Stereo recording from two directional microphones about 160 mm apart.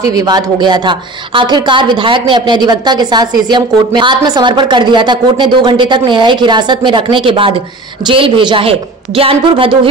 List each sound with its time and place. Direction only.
0.1 s a woman's voice: 25° right (ahead or behind)